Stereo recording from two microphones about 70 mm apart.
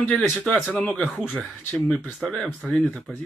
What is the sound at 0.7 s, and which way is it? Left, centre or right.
Speech, centre.